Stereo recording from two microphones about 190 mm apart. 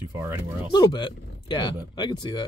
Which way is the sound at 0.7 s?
25° left (ahead or behind).